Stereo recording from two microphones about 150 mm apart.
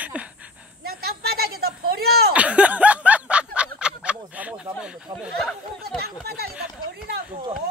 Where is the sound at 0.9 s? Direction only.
90° right.